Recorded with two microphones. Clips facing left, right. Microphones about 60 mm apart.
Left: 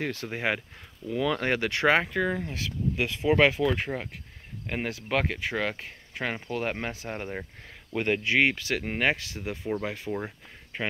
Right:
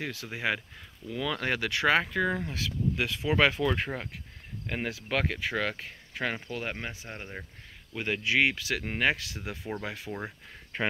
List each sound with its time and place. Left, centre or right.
0.0 s speech: left
1.0 s speech: left
3.6 s speech: centre
4.7 s speech: left
6.4 s speech: left
8.8 s speech: left
10.1 s speech: centre